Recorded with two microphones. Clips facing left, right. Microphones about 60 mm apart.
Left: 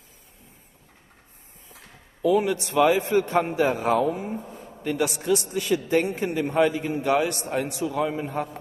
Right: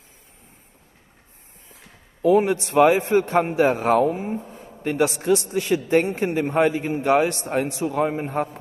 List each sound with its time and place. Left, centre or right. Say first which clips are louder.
2.2 s a man's voice: right 4 dB; right
4.6 s a sound: even; centre
4.8 s a man's voice: right 4 dB; right